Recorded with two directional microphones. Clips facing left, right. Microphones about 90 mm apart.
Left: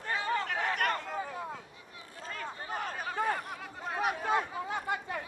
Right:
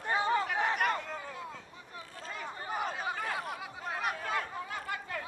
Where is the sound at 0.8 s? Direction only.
Centre (ahead or behind).